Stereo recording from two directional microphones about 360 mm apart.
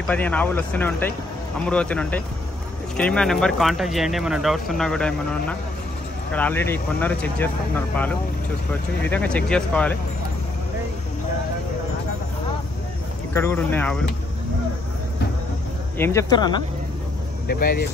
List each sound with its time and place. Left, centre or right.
0.0 s speech: centre
13.3 s speech: centre
16.0 s speech: centre
17.5 s speech: left